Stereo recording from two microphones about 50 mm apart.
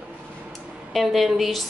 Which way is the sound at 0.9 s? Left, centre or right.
Centre.